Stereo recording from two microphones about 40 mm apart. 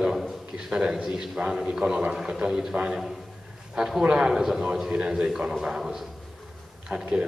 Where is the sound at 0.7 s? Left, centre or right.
Right.